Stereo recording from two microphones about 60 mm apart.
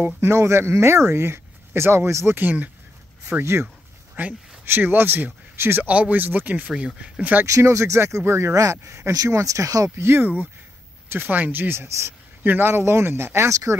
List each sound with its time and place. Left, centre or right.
0.2 s speech: right
2.3 s speech: right
4.1 s dog: right
4.6 s speech: right
7.4 s speech: right
8.5 s speech: right
9.1 s speech: right
9.9 s speech: right
13.5 s speech: right